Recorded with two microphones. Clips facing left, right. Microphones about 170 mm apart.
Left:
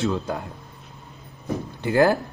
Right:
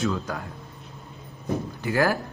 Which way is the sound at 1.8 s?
25° left (ahead or behind).